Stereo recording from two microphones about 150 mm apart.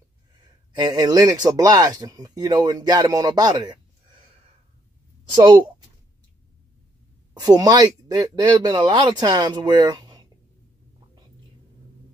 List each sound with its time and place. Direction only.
0.7 s speech: 30° right (ahead or behind)
5.3 s speech: 30° right (ahead or behind)
7.3 s speech: 25° right (ahead or behind)